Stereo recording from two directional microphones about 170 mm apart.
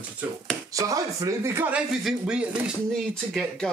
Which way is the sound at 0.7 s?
20° right (ahead or behind).